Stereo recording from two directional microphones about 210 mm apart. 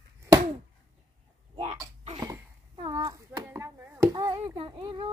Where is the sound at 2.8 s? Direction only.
15° right (ahead or behind).